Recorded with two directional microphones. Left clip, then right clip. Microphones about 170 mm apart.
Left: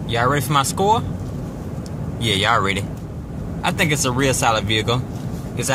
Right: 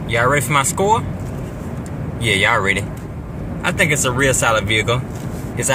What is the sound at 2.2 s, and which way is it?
Speech, 15° left (ahead or behind).